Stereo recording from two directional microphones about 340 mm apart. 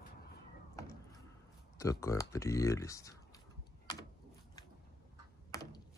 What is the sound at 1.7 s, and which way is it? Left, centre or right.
Speech, centre.